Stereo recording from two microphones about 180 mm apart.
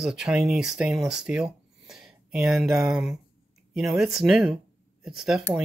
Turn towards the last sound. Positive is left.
turn(degrees=0)  # may be behind; listen again after turning